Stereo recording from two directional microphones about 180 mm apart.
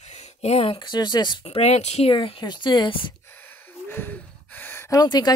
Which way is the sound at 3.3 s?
10° left (ahead or behind).